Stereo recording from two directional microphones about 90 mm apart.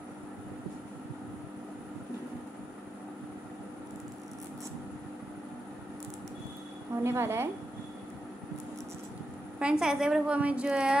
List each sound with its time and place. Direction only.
7.0 s a woman's voice: 30° right (ahead or behind)
9.6 s a woman's voice: 10° right (ahead or behind)